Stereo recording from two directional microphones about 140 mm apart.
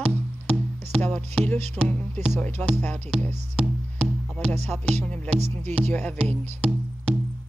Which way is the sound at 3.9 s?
10° left (ahead or behind).